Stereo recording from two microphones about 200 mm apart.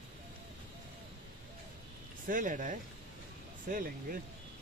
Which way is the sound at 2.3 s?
40° right (ahead or behind).